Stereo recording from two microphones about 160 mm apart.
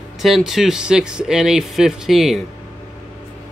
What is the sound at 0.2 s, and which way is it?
Speech, centre (ahead or behind).